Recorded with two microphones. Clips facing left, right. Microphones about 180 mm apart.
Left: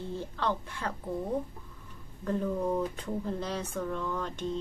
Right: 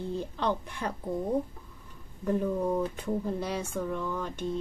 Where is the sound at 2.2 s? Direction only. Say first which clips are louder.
Right 2 dB; 10° right (ahead or behind).